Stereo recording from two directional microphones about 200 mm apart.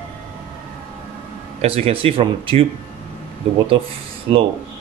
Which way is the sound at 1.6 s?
30° right (ahead or behind).